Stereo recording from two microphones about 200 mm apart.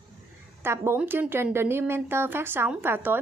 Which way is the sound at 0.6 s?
10° right (ahead or behind).